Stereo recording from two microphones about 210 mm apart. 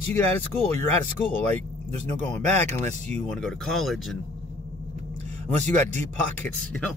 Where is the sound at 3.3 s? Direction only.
Centre (ahead or behind).